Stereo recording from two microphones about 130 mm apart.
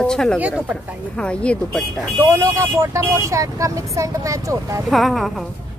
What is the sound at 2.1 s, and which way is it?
Speech, 20° right (ahead or behind).